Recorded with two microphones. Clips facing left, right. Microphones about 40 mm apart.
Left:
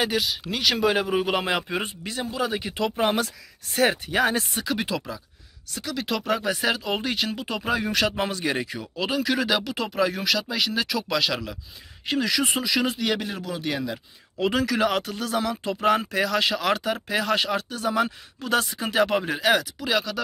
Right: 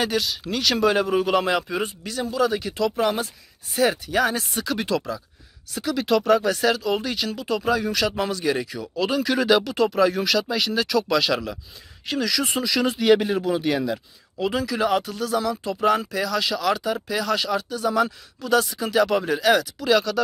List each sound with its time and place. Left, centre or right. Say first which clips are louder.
0.0 s speech: right 1 dB; centre; by 4.5 s left
4.6 s speech: right 3 dB; centre
5.8 s speech: right 7 dB; centre; by 8.8 s left
8.8 s speech: right 3 dB; centre
12.1 s speech: even; left
12.4 s speech: right 1 dB; centre
12.9 s speech: right 9 dB; centre
13.2 s speech: right 8 dB; centre
13.7 s speech: right 5 dB; centre
14.4 s speech: left 1 dB; left; by 20.2 s centre